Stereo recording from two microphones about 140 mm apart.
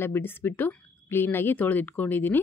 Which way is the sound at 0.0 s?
15° left (ahead or behind).